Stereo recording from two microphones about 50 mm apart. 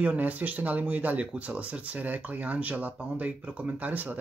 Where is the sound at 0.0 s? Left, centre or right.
Right.